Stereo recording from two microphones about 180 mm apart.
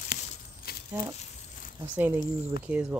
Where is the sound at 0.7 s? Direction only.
55° left (ahead or behind).